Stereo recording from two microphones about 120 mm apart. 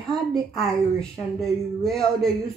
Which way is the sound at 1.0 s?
Centre (ahead or behind).